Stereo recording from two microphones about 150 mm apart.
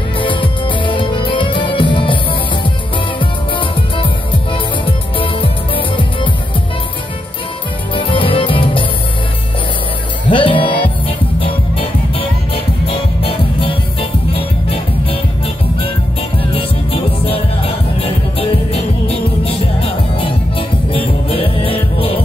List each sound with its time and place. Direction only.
0.2 s music: 35° left (ahead or behind)
7.9 s music: 35° left (ahead or behind)
10.3 s music: 35° left (ahead or behind)